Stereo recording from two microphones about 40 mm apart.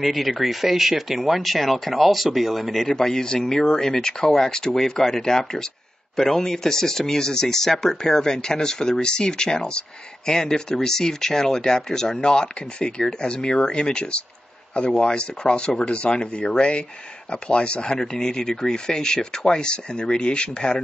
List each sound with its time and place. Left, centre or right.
0.0 s speech: centre
2.8 s speech: centre
17.9 s speech: centre